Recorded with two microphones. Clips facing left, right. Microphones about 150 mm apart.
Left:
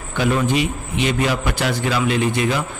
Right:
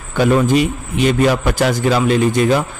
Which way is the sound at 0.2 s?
45° right (ahead or behind).